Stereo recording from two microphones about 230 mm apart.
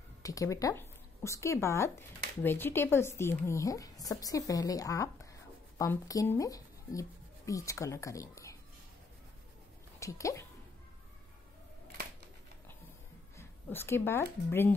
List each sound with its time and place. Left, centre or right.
0.2 s speech: centre
9.9 s speech: centre
13.4 s speech: centre